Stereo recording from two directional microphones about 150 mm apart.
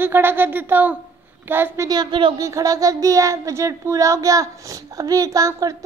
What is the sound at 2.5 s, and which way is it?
Child singing, 20° right (ahead or behind).